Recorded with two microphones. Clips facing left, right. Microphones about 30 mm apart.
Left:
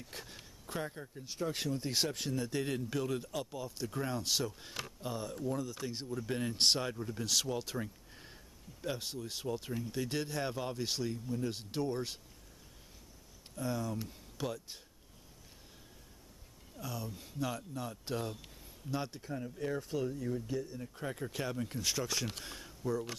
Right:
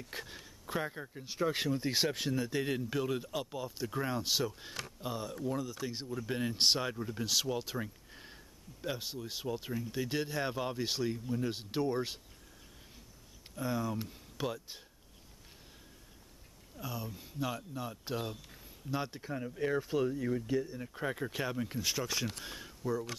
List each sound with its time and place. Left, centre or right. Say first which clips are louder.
0.0 s a sound: right 4 dB; centre
0.8 s speech: right 2 dB; right
13.6 s speech: right 2 dB; centre
16.7 s speech: right 1 dB; centre
19.2 s speech: right 3 dB; right